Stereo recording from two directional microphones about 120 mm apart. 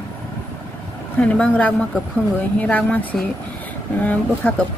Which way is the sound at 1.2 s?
10° left (ahead or behind).